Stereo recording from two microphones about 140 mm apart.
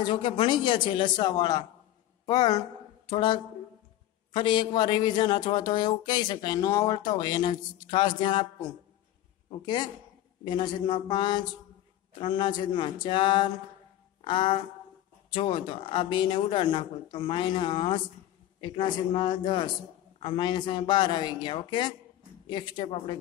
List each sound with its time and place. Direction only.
0.0 s a woman's voice: 35° left (ahead or behind)